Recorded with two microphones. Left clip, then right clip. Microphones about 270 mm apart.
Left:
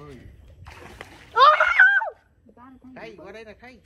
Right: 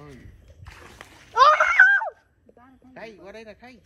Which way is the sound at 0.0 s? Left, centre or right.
Centre.